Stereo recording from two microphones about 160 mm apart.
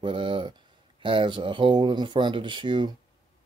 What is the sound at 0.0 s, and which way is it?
Speech, 30° right (ahead or behind).